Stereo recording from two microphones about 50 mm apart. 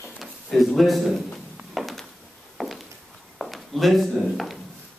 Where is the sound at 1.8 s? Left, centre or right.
Centre.